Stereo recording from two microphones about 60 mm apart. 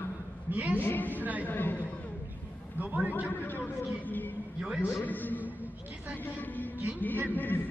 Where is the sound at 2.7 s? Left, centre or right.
Right.